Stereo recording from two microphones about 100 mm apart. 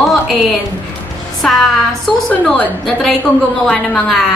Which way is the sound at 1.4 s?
5° left (ahead or behind).